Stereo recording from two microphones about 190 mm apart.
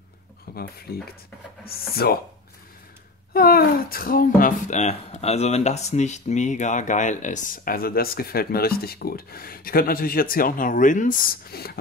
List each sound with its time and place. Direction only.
0.6 s speech: 55° left (ahead or behind)
3.3 s speech: 50° left (ahead or behind)